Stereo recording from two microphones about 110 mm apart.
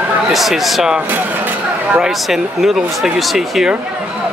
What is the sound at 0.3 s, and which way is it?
Speech, centre (ahead or behind).